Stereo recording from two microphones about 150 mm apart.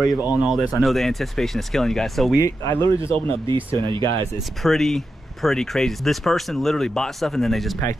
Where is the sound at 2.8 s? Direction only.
35° right (ahead or behind).